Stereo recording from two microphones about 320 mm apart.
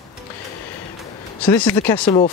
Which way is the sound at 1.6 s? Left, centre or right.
Centre.